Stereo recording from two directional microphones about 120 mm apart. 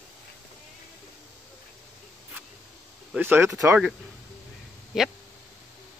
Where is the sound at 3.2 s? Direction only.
20° right (ahead or behind).